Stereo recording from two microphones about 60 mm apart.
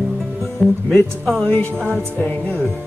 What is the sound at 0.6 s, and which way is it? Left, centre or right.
Speech, centre.